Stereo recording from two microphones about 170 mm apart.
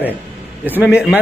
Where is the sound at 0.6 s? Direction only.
10° right (ahead or behind).